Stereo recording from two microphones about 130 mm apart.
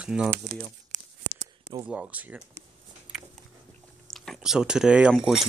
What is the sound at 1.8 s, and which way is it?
Speech, 10° right (ahead or behind).